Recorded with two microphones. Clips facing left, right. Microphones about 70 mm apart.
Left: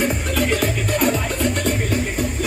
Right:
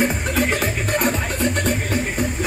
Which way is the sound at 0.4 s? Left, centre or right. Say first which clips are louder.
Even; right.